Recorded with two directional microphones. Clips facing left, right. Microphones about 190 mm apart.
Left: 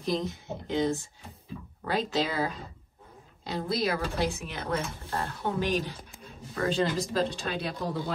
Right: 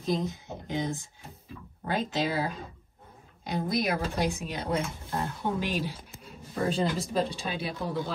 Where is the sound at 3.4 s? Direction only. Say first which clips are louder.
Right 1 dB; 15° right (ahead or behind).